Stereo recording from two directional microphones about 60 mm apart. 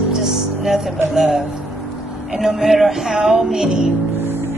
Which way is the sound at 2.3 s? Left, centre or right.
Centre.